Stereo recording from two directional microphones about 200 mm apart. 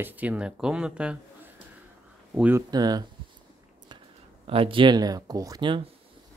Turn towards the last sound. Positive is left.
turn(degrees=-20)  # may be behind; listen again after turning